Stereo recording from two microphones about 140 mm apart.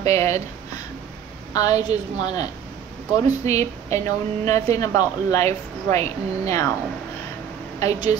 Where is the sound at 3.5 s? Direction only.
50° right (ahead or behind).